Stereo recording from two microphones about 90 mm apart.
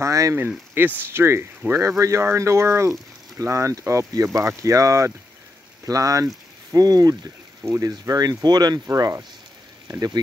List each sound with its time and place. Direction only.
0.0 s speech: 35° right (ahead or behind)
0.8 s speech: 20° right (ahead or behind); by 8.8 s 50° right (ahead or behind)
8.8 s speech: 35° right (ahead or behind)